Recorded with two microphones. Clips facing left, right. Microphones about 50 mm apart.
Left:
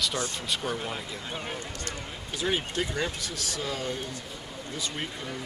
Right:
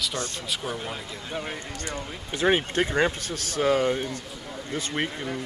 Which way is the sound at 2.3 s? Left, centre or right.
Right.